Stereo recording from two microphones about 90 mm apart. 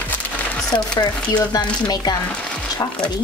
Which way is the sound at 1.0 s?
55° left (ahead or behind).